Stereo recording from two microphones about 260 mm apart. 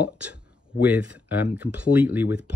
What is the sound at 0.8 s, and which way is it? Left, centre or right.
Speech, centre.